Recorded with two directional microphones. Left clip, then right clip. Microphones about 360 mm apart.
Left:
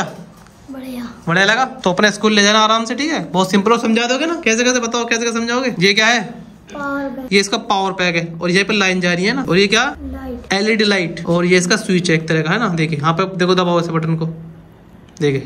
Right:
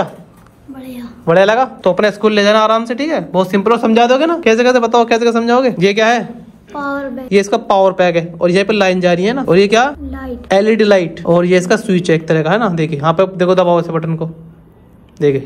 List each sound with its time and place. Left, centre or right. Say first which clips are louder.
0.7 s a woman's voice: left 1 dB; centre
1.2 s a man's voice: right 4 dB; centre
6.7 s a sound: right 3 dB; centre
7.2 s a man's voice: right 4 dB; centre